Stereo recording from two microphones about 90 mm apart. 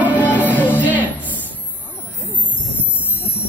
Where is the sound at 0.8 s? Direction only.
20° right (ahead or behind).